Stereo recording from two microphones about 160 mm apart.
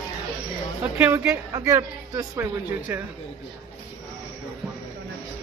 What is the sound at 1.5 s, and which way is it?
Speech, 20° right (ahead or behind).